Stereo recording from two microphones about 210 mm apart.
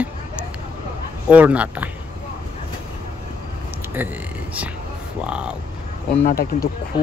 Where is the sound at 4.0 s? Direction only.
10° right (ahead or behind).